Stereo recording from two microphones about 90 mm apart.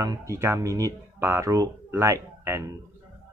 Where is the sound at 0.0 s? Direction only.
35° right (ahead or behind).